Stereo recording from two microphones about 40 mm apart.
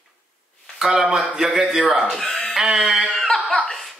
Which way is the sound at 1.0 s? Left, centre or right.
Centre.